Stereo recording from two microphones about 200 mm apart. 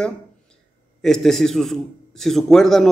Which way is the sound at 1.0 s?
Centre (ahead or behind).